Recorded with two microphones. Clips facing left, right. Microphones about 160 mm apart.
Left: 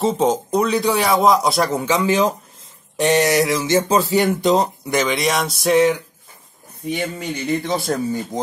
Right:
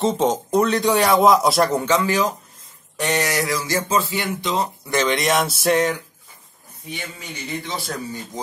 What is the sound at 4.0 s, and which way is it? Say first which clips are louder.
Speech: left 9 dB; 45° left (ahead or behind).